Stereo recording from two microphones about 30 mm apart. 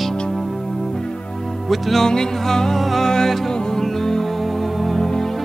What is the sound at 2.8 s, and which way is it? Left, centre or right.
Music, centre.